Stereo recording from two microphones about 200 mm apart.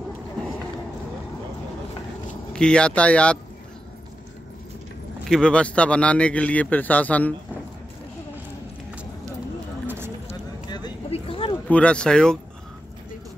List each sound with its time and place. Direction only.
2.5 s speech: 5° left (ahead or behind)
5.2 s a man's voice: 5° left (ahead or behind)
9.8 s run: 10° right (ahead or behind)
10.3 s a sound: 20° left (ahead or behind)
11.6 s speech: 5° left (ahead or behind)